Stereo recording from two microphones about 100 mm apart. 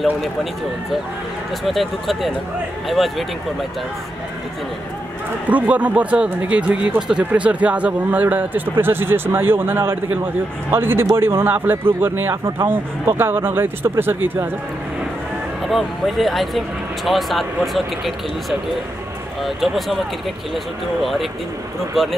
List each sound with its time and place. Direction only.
1.6 s speech: centre (ahead or behind)
5.5 s speech: 15° right (ahead or behind)
15.6 s speech: centre (ahead or behind)